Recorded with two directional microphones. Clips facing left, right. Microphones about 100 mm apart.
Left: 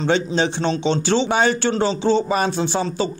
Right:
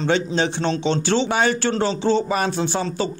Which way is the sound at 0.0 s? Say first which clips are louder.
Left 1 dB; 25° left (ahead or behind).